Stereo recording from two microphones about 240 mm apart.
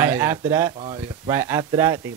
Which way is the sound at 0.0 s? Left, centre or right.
Centre.